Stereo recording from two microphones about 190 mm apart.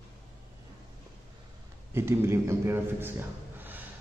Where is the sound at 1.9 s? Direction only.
15° right (ahead or behind).